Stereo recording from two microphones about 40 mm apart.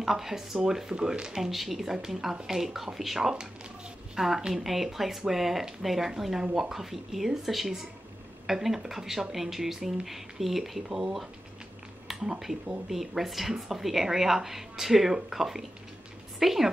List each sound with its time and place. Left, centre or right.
0.0 s a woman's voice: centre
4.6 s speech: centre
12.1 s speech: centre